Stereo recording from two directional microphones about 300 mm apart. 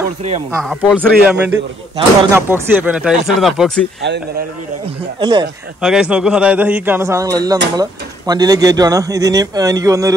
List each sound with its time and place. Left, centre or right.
0.2 s speech: right
0.6 s speech: centre
4.8 s speech: centre
5.8 s speech: centre